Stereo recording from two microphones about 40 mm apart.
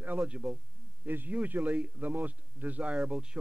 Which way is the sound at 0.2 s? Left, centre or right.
Right.